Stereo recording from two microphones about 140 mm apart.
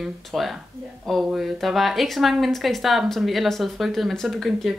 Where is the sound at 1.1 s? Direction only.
Centre (ahead or behind).